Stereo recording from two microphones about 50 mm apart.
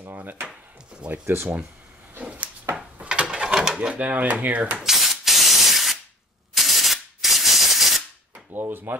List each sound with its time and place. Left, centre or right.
0.1 s speech: right
1.2 s speech: right
2.7 s drawer open or close: right
3.9 s speech: right
4.7 s rub: centre
6.5 s spray: centre
8.5 s speech: right